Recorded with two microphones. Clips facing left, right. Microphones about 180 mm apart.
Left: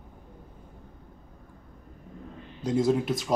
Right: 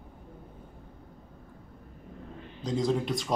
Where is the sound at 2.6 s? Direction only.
5° left (ahead or behind).